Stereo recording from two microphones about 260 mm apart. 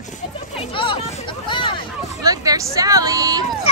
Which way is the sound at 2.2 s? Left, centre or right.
Centre.